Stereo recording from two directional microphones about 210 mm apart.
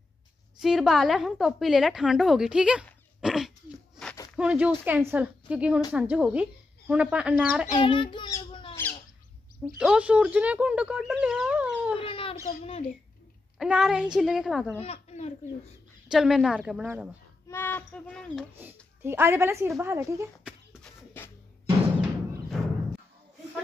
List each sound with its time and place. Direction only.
0.6 s a woman's voice: centre (ahead or behind)
7.6 s a sound: 25° left (ahead or behind)
9.8 s speech: 5° right (ahead or behind)
11.2 s chicken: centre (ahead or behind)
12.0 s wail: 25° left (ahead or behind)
12.4 s speech: 30° left (ahead or behind)
13.6 s speech: 5° right (ahead or behind)
14.8 s speech: 30° left (ahead or behind)
16.1 s speech: centre (ahead or behind)
17.5 s speech: 10° left (ahead or behind)
18.6 s a woman's voice: 10° right (ahead or behind)
20.4 s a sound: 5° left (ahead or behind)
22.5 s music: centre (ahead or behind)